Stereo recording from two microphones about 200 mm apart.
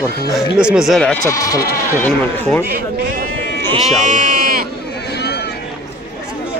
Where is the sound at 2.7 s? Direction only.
45° right (ahead or behind).